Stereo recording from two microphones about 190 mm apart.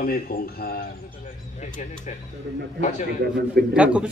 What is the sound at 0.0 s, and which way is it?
Speech, 50° left (ahead or behind).